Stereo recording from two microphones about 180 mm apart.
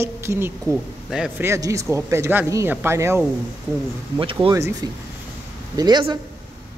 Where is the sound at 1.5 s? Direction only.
15° right (ahead or behind).